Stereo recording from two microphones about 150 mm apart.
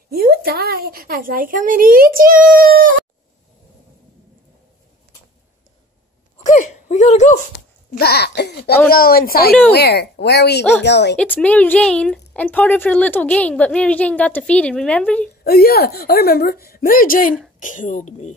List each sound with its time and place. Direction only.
0.1 s a woman's voice: 90° right
6.4 s whimper: 55° left (ahead or behind)
8.0 s a woman's voice: 90° left
11.1 s speech: 10° left (ahead or behind)
15.4 s a woman's voice: 90° left; by 18.3 s 50° left (ahead or behind)